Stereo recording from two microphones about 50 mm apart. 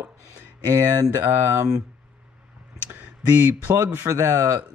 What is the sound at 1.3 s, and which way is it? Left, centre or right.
Speech, right.